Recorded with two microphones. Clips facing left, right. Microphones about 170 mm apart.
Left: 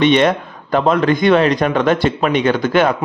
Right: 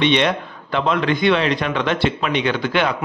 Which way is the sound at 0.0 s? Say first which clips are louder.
Left 5 dB; 45° left (ahead or behind).